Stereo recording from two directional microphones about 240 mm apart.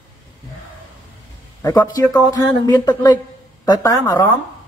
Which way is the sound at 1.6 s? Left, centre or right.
Centre.